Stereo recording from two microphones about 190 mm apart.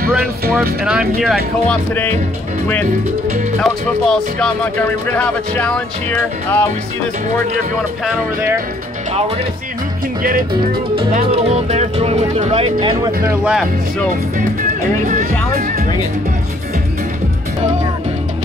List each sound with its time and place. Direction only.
0.1 s speech: 5° right (ahead or behind)
3.6 s speech: 5° left (ahead or behind)
8.0 s speech: 10° right (ahead or behind)
11.3 s speech: 30° right (ahead or behind)
15.5 s speech: 50° right (ahead or behind)